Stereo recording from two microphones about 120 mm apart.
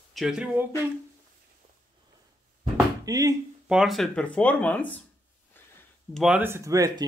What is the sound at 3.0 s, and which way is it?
Speech, 30° right (ahead or behind).